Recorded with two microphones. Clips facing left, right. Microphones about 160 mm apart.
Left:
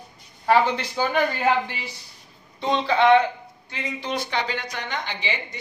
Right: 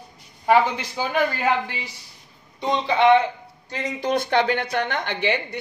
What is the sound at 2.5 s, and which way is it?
Speech, 15° right (ahead or behind).